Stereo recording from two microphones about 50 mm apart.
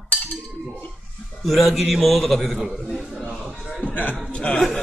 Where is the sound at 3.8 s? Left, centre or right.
Left.